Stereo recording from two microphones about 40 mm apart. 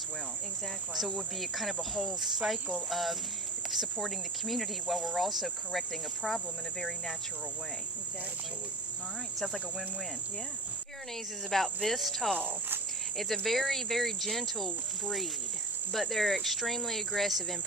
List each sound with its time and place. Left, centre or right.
0.9 s cricket: centre
11.5 s cricket: centre
12.4 s speech: right
13.5 s cricket: centre